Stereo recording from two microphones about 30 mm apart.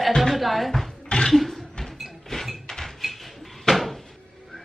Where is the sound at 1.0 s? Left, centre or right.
Left.